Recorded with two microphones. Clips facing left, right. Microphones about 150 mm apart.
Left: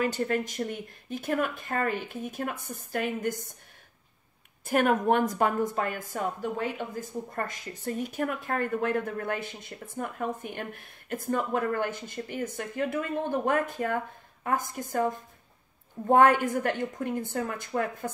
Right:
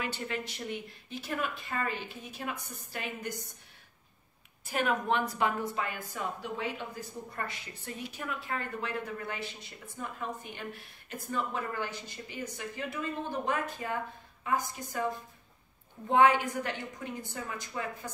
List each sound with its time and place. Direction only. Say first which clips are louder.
0.0 s a woman's voice: left 8 dB; 45° left (ahead or behind)
4.6 s a woman's voice: left 6 dB; 50° left (ahead or behind)